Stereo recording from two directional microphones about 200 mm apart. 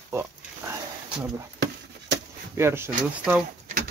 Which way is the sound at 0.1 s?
15° right (ahead or behind).